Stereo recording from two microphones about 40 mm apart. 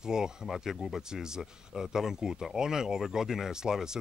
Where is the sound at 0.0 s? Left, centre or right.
Centre.